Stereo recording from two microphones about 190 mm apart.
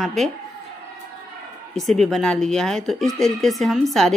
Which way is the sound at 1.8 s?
Centre (ahead or behind).